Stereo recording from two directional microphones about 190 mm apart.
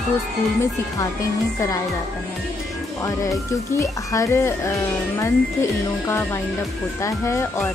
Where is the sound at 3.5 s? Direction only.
15° left (ahead or behind).